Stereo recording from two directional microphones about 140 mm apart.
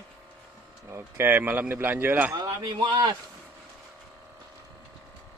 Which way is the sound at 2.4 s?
30° right (ahead or behind).